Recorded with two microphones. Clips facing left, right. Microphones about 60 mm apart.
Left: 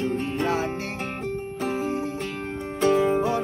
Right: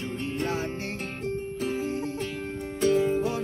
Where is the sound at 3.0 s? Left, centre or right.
Left.